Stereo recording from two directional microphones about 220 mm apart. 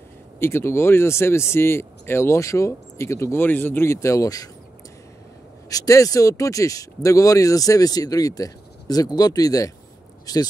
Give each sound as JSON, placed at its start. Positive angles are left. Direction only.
{"t": 0.4, "sound": "speech", "side_deg": 10}
{"t": 5.7, "sound": "speech", "side_deg": 15}